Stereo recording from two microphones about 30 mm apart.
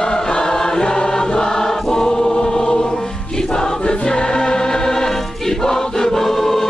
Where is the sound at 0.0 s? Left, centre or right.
Left.